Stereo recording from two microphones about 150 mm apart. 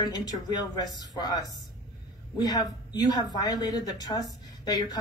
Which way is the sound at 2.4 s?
25° left (ahead or behind).